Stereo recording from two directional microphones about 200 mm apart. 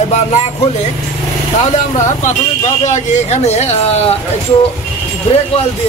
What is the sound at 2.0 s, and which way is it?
Speech, 35° left (ahead or behind).